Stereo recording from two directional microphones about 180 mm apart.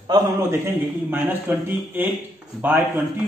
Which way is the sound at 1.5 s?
10° right (ahead or behind).